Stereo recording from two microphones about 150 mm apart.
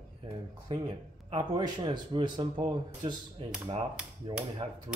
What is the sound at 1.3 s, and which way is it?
Speech, 30° right (ahead or behind).